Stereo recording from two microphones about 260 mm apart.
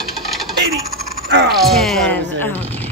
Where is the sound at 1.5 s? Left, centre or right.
Centre.